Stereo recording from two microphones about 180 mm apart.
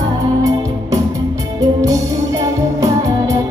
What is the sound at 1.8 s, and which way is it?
Music, 20° right (ahead or behind).